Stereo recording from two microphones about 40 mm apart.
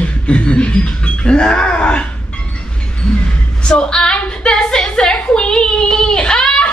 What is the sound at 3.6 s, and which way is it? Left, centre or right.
A woman's voice, centre.